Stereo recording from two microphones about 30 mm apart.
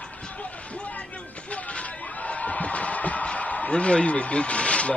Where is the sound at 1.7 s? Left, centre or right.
Left.